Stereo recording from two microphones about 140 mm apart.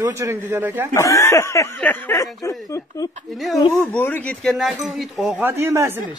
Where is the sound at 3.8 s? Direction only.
10° left (ahead or behind).